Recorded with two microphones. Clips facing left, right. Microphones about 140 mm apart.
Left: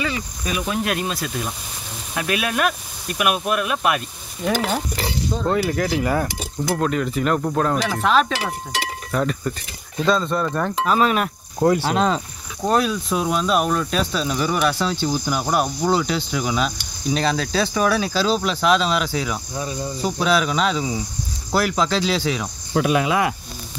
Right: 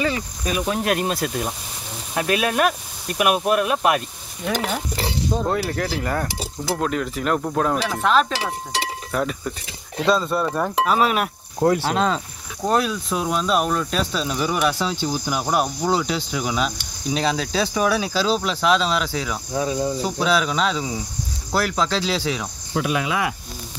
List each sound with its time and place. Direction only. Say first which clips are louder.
0.0 s speech: right 2 dB; 40° right (ahead or behind)
2.1 s speech: right 2 dB; 35° right (ahead or behind)
5.5 s speech: left 3 dB; centre (ahead or behind)
22.8 s speech: left 4 dB; 50° left (ahead or behind)